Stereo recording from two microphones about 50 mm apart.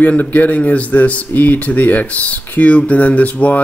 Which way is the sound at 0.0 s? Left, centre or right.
Left.